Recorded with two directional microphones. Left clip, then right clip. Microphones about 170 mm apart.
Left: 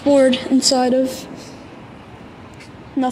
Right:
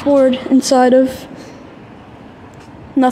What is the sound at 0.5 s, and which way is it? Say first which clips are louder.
Speech: right 5 dB; 20° right (ahead or behind).